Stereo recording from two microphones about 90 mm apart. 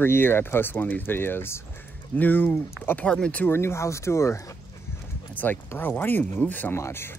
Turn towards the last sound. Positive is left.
turn(degrees=30)  # may be behind; listen again after turning